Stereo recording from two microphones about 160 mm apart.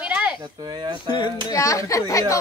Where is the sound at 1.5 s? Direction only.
20° left (ahead or behind).